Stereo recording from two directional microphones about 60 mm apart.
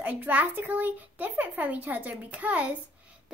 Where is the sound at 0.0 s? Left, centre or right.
Right.